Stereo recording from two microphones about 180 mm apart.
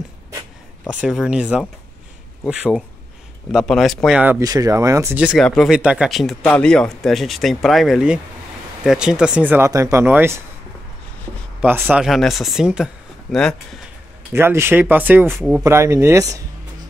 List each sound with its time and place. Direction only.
0.8 s speech: 5° right (ahead or behind)
4.4 s speech: 20° right (ahead or behind)
5.2 s speech: centre (ahead or behind)
11.6 s speech: 10° right (ahead or behind)
14.3 s speech: 15° right (ahead or behind)